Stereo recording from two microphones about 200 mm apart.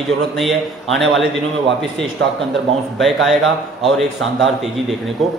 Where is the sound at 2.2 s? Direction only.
60° right (ahead or behind).